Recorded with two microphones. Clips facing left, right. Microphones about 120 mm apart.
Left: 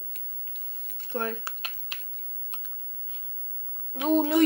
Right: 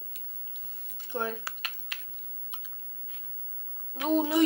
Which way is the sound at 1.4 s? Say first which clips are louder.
Left 1 dB; 25° left (ahead or behind).